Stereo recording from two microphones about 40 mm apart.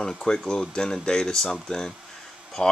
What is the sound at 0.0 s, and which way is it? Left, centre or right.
Speech, centre.